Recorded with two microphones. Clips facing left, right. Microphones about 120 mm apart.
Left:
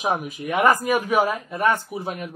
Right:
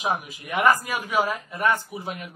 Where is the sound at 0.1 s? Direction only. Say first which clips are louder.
Left 3 dB; 20° left (ahead or behind).